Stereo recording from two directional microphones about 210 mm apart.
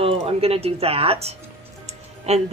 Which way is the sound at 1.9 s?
30° right (ahead or behind).